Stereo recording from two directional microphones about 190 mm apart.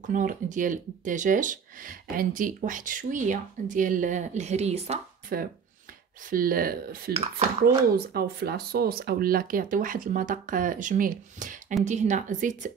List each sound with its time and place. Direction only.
0.0 s speech: 45° right (ahead or behind)
5.3 s a woman's voice: 50° right (ahead or behind)